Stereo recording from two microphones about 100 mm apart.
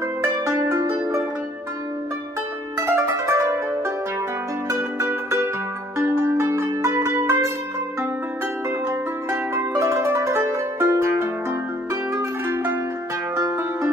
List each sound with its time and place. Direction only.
0.2 s music: 30° right (ahead or behind)
2.8 s zither: 30° right (ahead or behind)
4.7 s music: 25° right (ahead or behind)
9.8 s music: 30° right (ahead or behind)